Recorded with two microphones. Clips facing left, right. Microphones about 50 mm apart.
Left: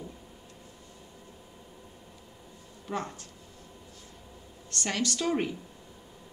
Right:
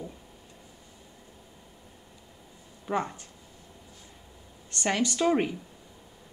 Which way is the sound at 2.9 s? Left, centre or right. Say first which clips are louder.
Right 5 dB; centre.